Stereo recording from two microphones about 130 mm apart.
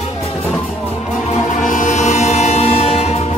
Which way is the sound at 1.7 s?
70° left (ahead or behind).